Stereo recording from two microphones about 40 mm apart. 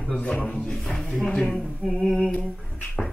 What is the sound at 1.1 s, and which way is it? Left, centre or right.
Speech, centre.